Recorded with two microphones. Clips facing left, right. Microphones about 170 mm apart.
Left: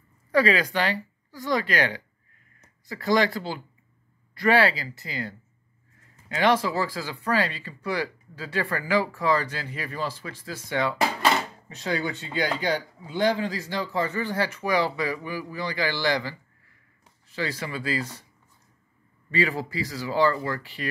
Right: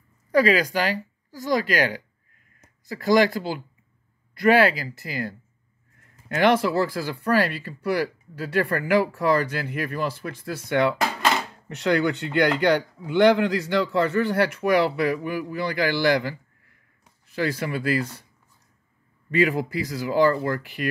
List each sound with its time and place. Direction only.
0.3 s speech: 40° right (ahead or behind)
17.4 s speech: 55° right (ahead or behind)
19.7 s speech: 50° right (ahead or behind)